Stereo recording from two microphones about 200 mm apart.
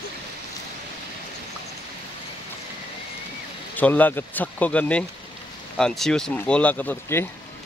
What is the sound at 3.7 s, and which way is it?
Speech, 10° left (ahead or behind).